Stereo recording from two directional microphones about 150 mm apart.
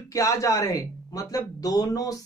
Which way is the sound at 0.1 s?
20° left (ahead or behind).